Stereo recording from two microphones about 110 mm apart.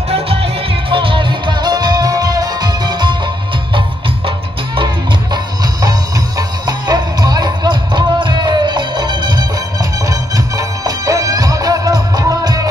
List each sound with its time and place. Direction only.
0.1 s music: 60° right (ahead or behind); by 3.2 s 40° right (ahead or behind)
5.3 s music: 35° right (ahead or behind)